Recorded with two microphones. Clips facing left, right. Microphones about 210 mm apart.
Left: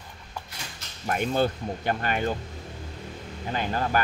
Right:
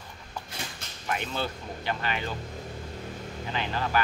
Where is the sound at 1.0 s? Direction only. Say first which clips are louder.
Left 7 dB; 45° left (ahead or behind).